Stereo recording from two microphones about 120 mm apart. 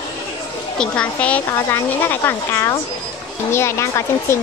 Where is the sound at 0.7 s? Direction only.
10° left (ahead or behind).